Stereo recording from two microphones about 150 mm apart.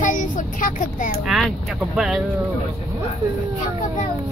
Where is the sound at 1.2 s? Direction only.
Centre (ahead or behind).